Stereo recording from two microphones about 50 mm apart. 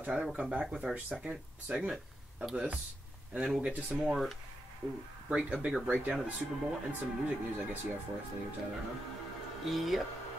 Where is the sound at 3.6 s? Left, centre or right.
Right.